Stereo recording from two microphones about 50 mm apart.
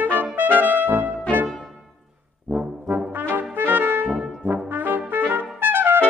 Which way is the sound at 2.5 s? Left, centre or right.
Right.